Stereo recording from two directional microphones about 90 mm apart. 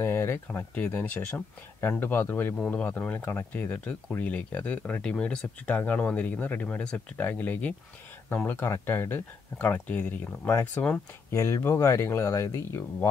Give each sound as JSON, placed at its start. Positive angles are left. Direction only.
{"t": 0.0, "sound": "speech", "side_deg": 25}